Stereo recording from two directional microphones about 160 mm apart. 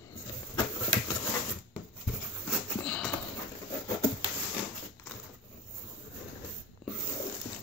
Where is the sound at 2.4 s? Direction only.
5° left (ahead or behind).